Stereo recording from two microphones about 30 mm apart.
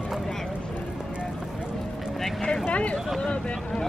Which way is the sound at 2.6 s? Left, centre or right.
Left.